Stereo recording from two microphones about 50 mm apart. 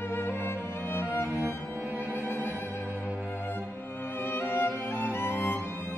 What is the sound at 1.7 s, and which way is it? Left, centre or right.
Music, right.